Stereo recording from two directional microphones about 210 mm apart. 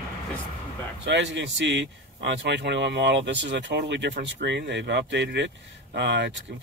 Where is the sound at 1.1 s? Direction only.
60° right (ahead or behind).